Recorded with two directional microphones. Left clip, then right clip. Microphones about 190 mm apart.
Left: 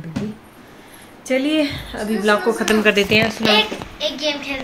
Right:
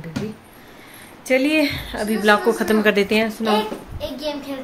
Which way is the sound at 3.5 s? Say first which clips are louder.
Left 4 dB; 30° right (ahead or behind).